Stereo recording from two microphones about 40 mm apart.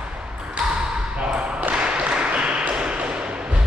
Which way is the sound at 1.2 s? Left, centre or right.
Right.